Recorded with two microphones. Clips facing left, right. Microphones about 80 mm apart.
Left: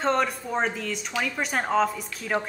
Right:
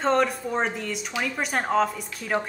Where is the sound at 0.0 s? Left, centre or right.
Centre.